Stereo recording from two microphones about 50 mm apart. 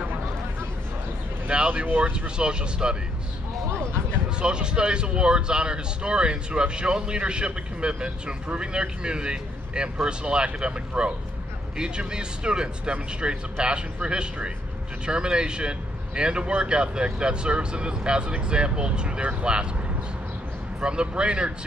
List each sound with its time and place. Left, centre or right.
1.5 s speech: right
3.7 s a sound: right
4.4 s a man's voice: centre
20.8 s speech: centre